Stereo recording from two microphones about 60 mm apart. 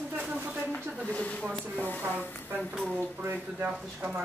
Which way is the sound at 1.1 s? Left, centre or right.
Left.